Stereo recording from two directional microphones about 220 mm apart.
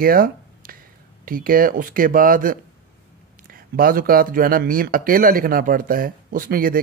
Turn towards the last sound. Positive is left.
turn(degrees=-40)  # may be behind; listen again after turning